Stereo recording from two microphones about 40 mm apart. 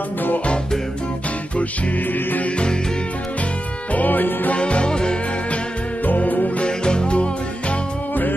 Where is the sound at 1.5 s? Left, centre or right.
Left.